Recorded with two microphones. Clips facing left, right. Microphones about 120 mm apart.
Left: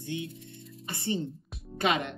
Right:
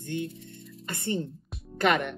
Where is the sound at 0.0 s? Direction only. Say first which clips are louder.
Right 3 dB; 55° right (ahead or behind).